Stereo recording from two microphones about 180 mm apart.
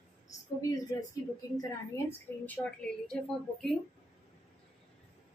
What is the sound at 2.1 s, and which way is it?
A woman's voice, 10° left (ahead or behind).